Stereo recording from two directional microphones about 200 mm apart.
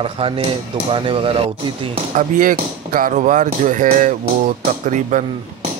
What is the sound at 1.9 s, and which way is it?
Speech, 40° right (ahead or behind).